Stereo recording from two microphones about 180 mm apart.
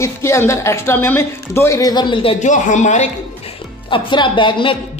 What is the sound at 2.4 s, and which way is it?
Speech, 45° left (ahead or behind).